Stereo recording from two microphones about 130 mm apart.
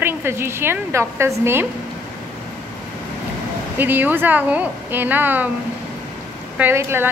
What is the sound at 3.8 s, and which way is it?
Speech, 15° right (ahead or behind).